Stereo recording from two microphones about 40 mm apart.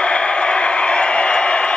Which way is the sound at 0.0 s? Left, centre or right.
Left.